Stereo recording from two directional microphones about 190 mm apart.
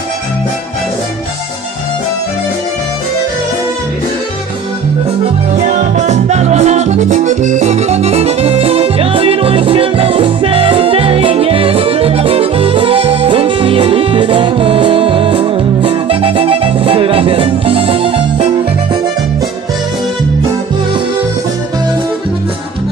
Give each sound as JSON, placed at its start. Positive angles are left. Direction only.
{"t": 5.5, "sound": "music", "side_deg": -40}